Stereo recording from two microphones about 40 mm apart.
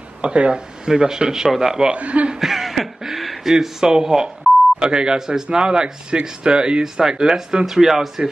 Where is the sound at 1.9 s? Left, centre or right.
Right.